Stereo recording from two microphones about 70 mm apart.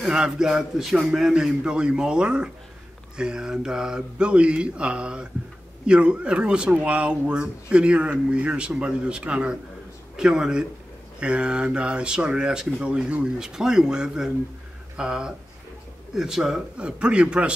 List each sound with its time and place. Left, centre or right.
0.0 s speech: centre